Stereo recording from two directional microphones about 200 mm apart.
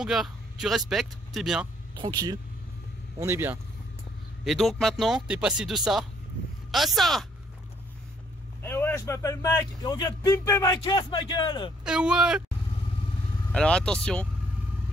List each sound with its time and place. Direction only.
0.0 s speech: centre (ahead or behind)
2.0 s speech: 20° right (ahead or behind)
4.5 s speech: centre (ahead or behind)
8.6 s speech: 10° left (ahead or behind)
11.8 s speech: 5° right (ahead or behind)
13.5 s speech: 5° left (ahead or behind)